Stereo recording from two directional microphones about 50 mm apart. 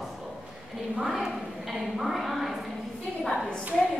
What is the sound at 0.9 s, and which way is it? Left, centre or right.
A woman's voice, centre.